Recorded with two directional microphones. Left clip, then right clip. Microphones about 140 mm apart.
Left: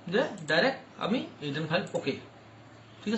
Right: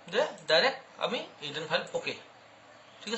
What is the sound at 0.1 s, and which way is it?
A woman's voice, 20° right (ahead or behind).